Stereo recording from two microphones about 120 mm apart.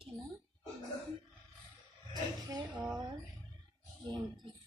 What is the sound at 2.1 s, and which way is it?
Speech, 35° right (ahead or behind).